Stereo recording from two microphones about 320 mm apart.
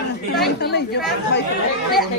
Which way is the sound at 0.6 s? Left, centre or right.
Left.